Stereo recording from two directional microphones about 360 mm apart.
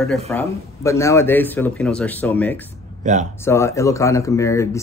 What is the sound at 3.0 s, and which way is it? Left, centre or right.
Speech, centre.